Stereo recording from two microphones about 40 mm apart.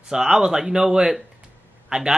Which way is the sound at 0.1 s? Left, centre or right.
Centre.